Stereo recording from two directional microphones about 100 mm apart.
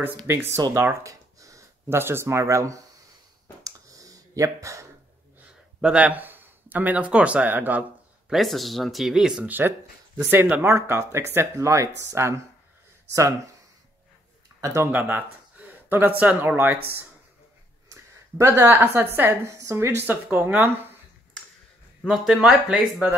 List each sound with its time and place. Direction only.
0.3 s a woman's voice: 25° right (ahead or behind)
3.6 s clicking: 35° right (ahead or behind)
5.8 s speech: 10° right (ahead or behind)
8.3 s speech: centre (ahead or behind)
9.5 s a woman's voice: 20° right (ahead or behind)
14.6 s speech: 30° right (ahead or behind)
14.9 s speech: 20° right (ahead or behind)
18.4 s a woman's voice: 25° right (ahead or behind)
22.0 s speech: centre (ahead or behind)